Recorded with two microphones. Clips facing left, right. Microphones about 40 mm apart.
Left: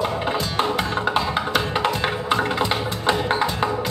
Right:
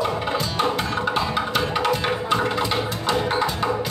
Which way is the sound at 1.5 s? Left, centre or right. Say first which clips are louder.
Even; centre.